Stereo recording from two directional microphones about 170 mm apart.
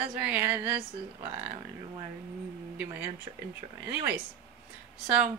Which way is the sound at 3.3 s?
30° right (ahead or behind).